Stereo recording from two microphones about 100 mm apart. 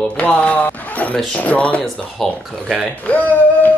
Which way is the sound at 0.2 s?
15° left (ahead or behind).